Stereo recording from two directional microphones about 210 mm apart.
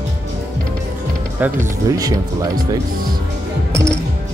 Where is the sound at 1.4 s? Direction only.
15° right (ahead or behind).